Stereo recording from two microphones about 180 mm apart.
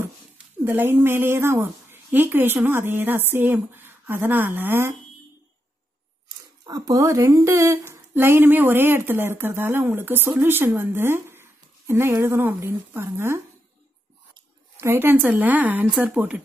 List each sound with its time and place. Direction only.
0.7 s speech: 10° right (ahead or behind)
6.6 s speech: 20° right (ahead or behind)
14.8 s speech: 15° right (ahead or behind)